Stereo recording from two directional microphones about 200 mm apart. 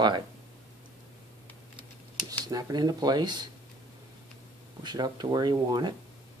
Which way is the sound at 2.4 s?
20° right (ahead or behind).